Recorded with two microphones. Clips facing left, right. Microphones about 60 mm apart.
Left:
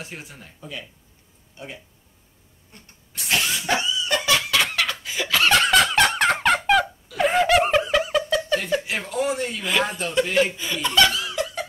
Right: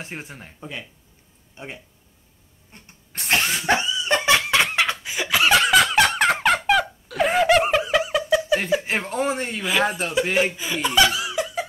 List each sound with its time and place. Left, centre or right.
0.0 s speech: right
3.1 s a sound: right; by 6.9 s centre
7.2 s laughter: centre
8.8 s speech: right
9.6 s speech: centre
10.3 s speech: centre